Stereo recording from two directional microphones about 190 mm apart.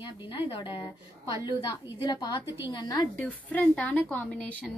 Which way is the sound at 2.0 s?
20° left (ahead or behind).